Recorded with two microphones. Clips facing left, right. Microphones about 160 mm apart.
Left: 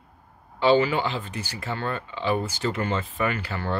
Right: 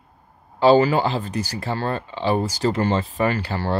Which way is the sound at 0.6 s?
40° right (ahead or behind).